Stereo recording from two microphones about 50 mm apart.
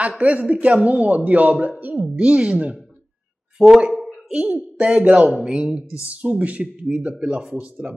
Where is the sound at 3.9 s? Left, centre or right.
Centre.